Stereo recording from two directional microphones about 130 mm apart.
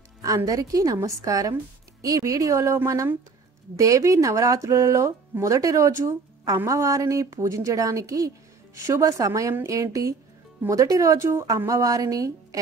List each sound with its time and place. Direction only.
0.5 s speech: 30° right (ahead or behind)